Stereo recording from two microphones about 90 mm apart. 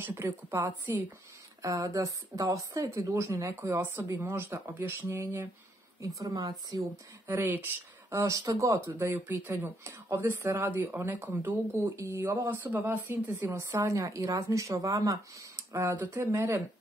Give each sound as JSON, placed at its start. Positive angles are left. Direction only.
{"t": 0.0, "sound": "speech", "side_deg": -30}
{"t": 5.9, "sound": "speech", "side_deg": -35}
{"t": 7.2, "sound": "speech", "side_deg": -20}
{"t": 8.1, "sound": "speech", "side_deg": -35}
{"t": 12.0, "sound": "speech", "side_deg": -40}
{"t": 12.4, "sound": "speech", "side_deg": -20}